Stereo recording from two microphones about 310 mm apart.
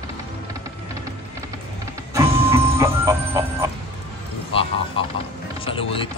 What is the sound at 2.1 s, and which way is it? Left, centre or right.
Music, centre.